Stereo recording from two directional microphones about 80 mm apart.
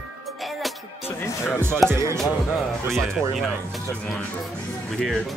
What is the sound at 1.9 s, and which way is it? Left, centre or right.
Speech, right.